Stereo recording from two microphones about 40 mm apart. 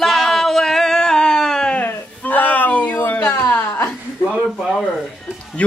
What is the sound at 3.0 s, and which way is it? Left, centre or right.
Speech, left.